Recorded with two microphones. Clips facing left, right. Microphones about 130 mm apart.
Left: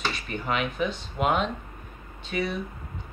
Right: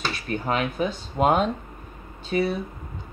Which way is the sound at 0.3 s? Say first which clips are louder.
Right 5 dB; 40° right (ahead or behind).